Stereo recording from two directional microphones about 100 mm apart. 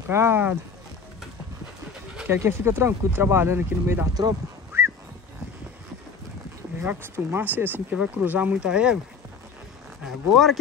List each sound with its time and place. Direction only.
0.1 s speech: 25° right (ahead or behind)
2.2 s speech: 25° right (ahead or behind)
4.1 s speech: 40° right (ahead or behind)
4.7 s a sound: 25° right (ahead or behind)
6.8 s speech: 20° right (ahead or behind)
10.0 s speech: centre (ahead or behind)